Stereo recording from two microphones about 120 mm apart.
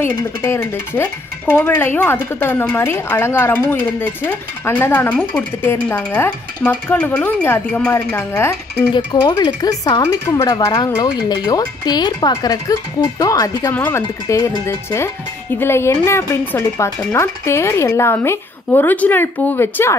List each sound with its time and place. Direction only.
0.0 s speech: 20° left (ahead or behind)
1.5 s stir: 15° left (ahead or behind)
7.9 s speech: 20° left (ahead or behind)
8.9 s speech: 40° left (ahead or behind)
13.7 s stir: 15° left (ahead or behind)
14.2 s speech: 30° left (ahead or behind)